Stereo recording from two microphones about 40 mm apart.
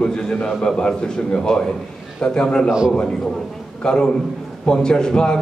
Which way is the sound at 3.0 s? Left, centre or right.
Centre.